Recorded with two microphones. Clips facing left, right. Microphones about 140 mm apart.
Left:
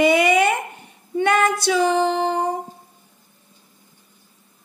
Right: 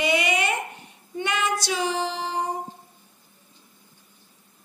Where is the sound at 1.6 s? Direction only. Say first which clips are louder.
Left 8 dB; 55° left (ahead or behind).